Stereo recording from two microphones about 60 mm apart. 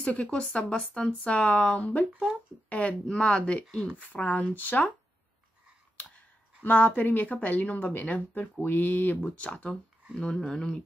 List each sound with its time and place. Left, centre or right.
0.0 s speech: centre
1.6 s speech: centre
2.7 s speech: left
4.1 s speech: left
5.9 s speech: left